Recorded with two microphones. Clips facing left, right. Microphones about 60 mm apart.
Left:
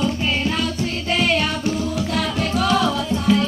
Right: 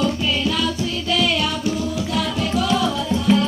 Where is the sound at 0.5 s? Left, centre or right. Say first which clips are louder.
Right 1 dB; left.